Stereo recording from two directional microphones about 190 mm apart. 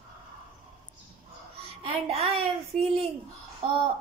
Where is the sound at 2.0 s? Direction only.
30° right (ahead or behind).